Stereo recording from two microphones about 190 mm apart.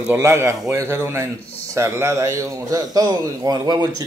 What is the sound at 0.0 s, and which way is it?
A man's voice, 10° right (ahead or behind).